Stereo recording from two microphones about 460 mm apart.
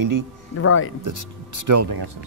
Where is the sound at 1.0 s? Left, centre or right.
Right.